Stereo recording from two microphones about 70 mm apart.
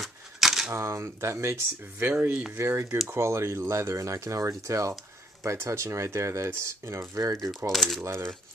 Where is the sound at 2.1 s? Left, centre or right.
Right.